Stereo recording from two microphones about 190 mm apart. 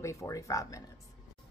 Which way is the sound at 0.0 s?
15° left (ahead or behind).